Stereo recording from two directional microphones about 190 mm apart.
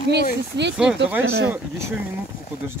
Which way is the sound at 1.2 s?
90° right.